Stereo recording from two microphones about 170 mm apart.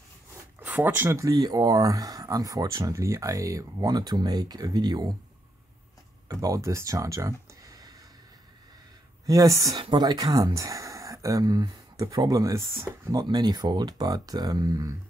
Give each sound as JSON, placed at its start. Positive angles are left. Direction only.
{"t": 0.6, "sound": "speech", "side_deg": -10}
{"t": 6.2, "sound": "speech", "side_deg": -20}
{"t": 9.2, "sound": "speech", "side_deg": -20}